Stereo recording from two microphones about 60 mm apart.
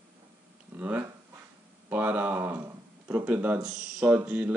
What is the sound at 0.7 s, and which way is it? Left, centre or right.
Speech, right.